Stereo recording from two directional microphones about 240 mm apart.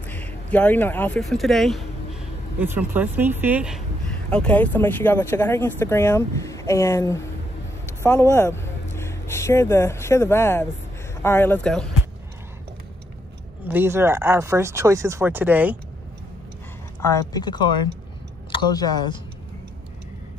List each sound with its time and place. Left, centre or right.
0.0 s speech: centre
13.7 s speech: centre
17.0 s speech: centre